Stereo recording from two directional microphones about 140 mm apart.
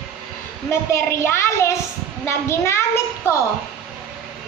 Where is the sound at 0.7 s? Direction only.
20° left (ahead or behind).